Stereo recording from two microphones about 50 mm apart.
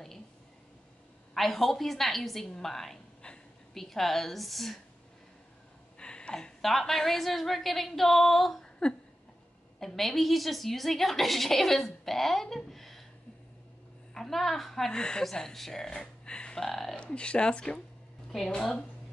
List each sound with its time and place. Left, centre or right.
1.3 s a woman's voice: centre
5.9 s a sound: centre
6.6 s a woman's voice: centre
9.8 s a woman's voice: centre
14.1 s a woman's voice: centre
16.5 s a woman's voice: centre
16.9 s a woman's voice: left